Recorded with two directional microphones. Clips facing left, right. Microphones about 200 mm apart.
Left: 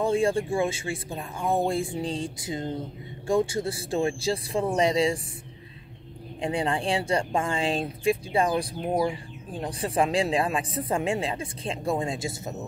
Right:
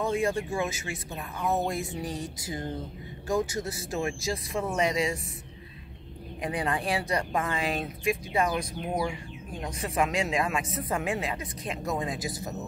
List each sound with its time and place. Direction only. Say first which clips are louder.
0.0 s speech: left 4 dB; 30° left (ahead or behind)
6.4 s speech: left 3 dB; 30° left (ahead or behind)